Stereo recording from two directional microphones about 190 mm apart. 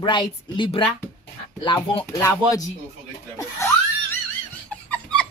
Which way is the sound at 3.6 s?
15° left (ahead or behind).